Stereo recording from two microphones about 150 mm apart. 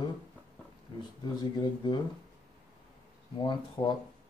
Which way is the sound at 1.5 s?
30° left (ahead or behind).